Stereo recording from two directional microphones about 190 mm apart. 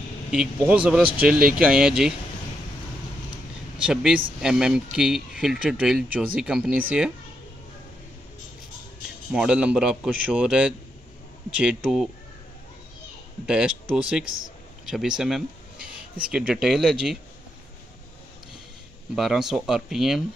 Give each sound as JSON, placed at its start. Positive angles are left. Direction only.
{"t": 0.3, "sound": "speech", "side_deg": -5}
{"t": 3.8, "sound": "speech", "side_deg": -5}
{"t": 9.3, "sound": "speech", "side_deg": -5}
{"t": 13.5, "sound": "speech", "side_deg": -5}
{"t": 19.1, "sound": "speech", "side_deg": 0}